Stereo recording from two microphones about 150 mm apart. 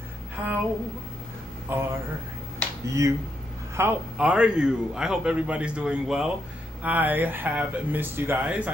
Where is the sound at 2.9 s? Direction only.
20° right (ahead or behind).